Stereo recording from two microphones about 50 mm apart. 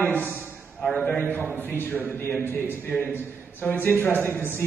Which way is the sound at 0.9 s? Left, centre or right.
Left.